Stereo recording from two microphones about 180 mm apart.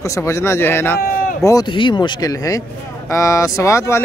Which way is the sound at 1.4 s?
25° left (ahead or behind).